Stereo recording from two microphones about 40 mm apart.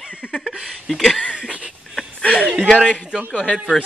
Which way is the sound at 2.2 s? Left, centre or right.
Left.